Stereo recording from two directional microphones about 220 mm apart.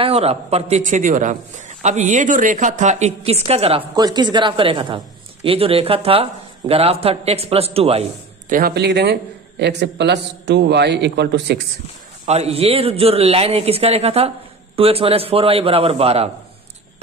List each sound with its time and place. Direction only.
0.0 s a man's voice: 25° right (ahead or behind); by 11.6 s 50° right (ahead or behind)
12.3 s a woman's voice: 30° right (ahead or behind)